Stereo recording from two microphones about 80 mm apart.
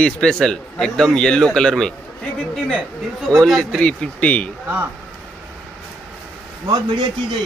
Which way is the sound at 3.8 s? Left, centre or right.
Centre.